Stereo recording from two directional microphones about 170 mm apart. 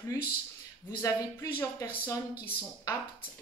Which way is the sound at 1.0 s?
20° left (ahead or behind).